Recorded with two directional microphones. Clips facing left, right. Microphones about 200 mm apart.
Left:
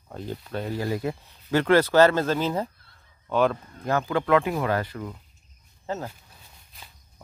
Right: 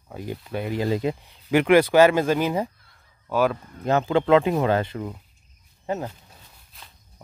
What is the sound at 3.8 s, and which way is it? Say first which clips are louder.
Speech: right 4 dB; 25° right (ahead or behind).